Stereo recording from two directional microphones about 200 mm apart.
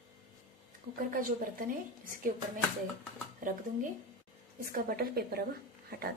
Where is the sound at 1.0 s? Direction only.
45° right (ahead or behind).